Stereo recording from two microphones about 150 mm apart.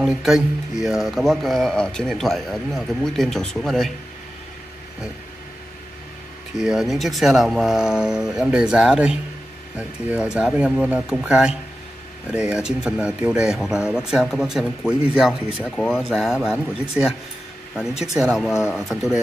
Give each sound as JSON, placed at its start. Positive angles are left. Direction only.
{"t": 0.0, "sound": "speech", "side_deg": -5}
{"t": 6.6, "sound": "speech", "side_deg": -5}
{"t": 15.6, "sound": "speech", "side_deg": 10}
{"t": 16.1, "sound": "speech", "side_deg": 0}